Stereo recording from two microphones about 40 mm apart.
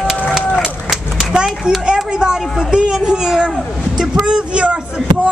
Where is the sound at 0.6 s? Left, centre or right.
Centre.